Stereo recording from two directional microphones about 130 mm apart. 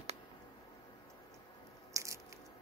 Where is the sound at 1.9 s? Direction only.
25° right (ahead or behind).